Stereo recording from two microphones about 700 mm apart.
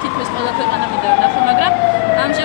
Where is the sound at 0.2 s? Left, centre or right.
Right.